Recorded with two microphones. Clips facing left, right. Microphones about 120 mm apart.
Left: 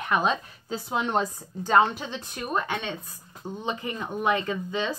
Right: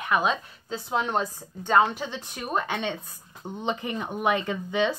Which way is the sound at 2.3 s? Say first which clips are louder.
Even; 15° right (ahead or behind).